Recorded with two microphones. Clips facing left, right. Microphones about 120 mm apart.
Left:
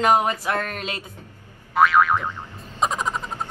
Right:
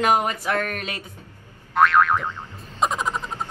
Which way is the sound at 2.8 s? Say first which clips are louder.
Even; centre (ahead or behind).